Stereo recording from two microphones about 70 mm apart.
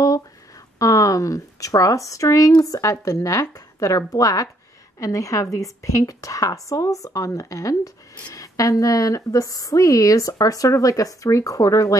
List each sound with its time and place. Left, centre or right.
0.7 s a woman's voice: left